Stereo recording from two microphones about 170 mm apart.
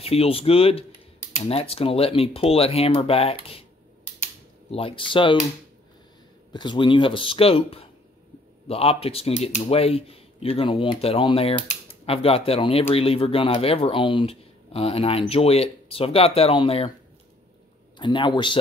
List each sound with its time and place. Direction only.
0.0 s speech: 35° left (ahead or behind)
4.6 s speech: 35° left (ahead or behind)
6.5 s speech: 25° left (ahead or behind)
17.9 s speech: 25° left (ahead or behind)